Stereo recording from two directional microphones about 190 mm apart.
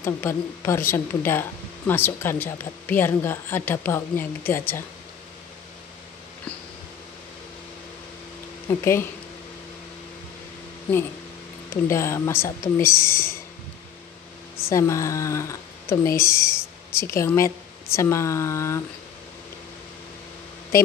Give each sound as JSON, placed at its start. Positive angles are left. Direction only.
{"t": 0.0, "sound": "speech", "side_deg": 10}
{"t": 8.6, "sound": "speech", "side_deg": 15}
{"t": 11.7, "sound": "speech", "side_deg": 15}
{"t": 14.6, "sound": "speech", "side_deg": 15}